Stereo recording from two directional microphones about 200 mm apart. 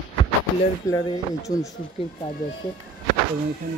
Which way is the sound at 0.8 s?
15° left (ahead or behind).